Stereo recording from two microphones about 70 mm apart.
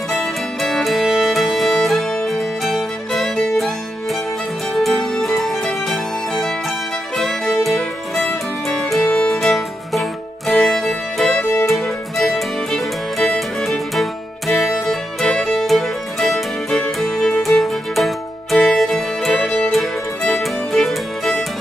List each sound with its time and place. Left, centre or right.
0.1 s music: centre
4.7 s music: centre
7.5 s music: centre
11.3 s music: left
11.6 s music: centre